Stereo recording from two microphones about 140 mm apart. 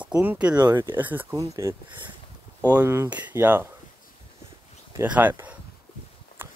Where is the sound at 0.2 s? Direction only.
10° right (ahead or behind).